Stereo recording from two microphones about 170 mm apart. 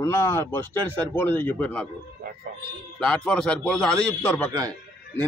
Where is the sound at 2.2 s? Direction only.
65° right (ahead or behind).